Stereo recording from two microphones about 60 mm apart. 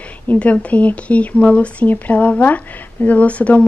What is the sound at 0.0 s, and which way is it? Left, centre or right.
Speech, left.